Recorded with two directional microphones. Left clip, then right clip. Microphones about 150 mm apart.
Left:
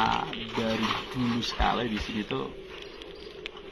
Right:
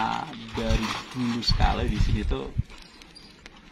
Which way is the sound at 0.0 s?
15° right (ahead or behind).